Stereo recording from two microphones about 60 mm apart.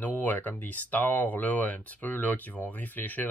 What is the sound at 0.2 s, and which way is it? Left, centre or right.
Speech, left.